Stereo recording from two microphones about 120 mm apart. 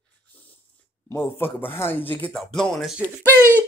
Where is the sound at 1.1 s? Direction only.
20° left (ahead or behind); by 3.0 s centre (ahead or behind).